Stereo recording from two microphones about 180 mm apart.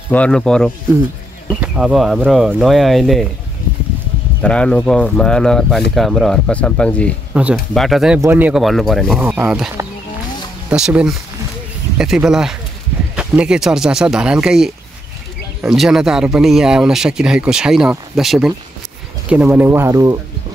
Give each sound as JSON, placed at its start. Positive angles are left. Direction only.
{"t": 0.1, "sound": "speech", "side_deg": 5}
{"t": 4.4, "sound": "speech", "side_deg": 5}
{"t": 10.7, "sound": "speech", "side_deg": -5}